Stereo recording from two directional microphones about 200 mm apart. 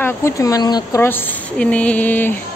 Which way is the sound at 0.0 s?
15° left (ahead or behind).